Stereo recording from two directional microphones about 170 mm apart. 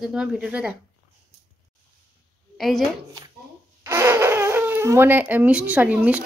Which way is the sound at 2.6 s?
Centre (ahead or behind).